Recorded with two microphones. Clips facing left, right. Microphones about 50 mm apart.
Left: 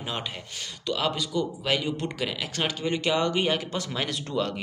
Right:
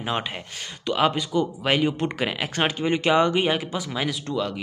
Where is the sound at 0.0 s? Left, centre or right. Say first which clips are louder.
Right 6 dB; right.